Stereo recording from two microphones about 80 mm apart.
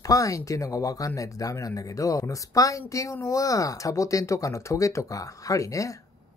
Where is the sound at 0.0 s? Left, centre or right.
Left.